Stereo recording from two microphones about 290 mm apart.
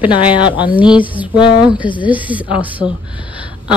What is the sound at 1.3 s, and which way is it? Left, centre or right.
Speech, centre.